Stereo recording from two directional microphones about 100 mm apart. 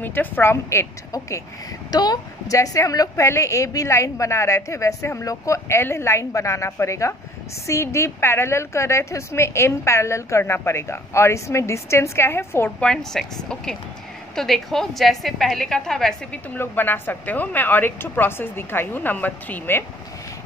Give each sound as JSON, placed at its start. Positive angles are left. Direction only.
{"t": 0.0, "sound": "a woman's voice", "side_deg": 20}
{"t": 1.9, "sound": "a woman's voice", "side_deg": 40}
{"t": 12.8, "sound": "a woman's voice", "side_deg": 5}
{"t": 16.5, "sound": "a woman's voice", "side_deg": 20}